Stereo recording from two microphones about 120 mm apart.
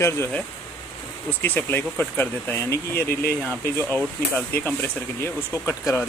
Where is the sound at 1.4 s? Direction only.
15° left (ahead or behind).